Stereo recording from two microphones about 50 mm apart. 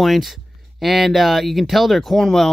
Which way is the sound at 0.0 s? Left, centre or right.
Centre.